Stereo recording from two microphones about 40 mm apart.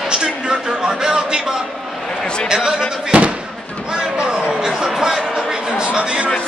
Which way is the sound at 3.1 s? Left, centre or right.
Right.